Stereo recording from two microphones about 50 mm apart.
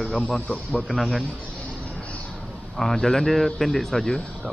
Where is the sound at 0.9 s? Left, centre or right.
Centre.